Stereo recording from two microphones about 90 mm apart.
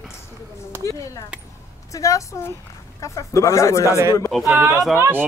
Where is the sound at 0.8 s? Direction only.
35° left (ahead or behind).